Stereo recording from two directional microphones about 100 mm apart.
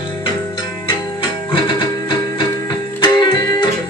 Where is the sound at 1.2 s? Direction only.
55° left (ahead or behind).